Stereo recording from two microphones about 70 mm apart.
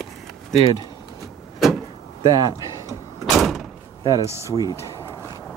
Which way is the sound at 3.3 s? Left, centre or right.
Centre.